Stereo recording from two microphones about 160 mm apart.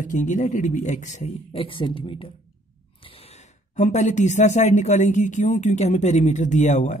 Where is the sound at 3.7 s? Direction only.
50° left (ahead or behind).